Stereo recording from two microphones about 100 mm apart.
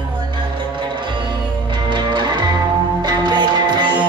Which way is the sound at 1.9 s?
50° right (ahead or behind).